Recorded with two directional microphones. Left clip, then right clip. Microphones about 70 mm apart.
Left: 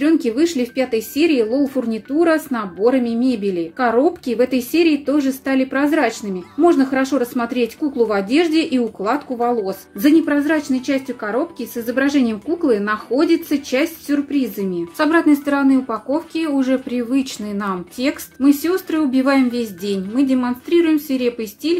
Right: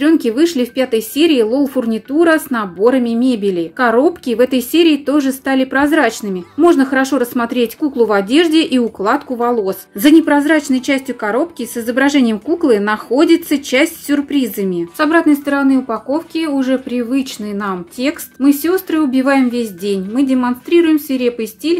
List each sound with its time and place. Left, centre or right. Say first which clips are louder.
0.0 s a woman's voice: right 4 dB; right
15.0 s speech: right 3 dB; centre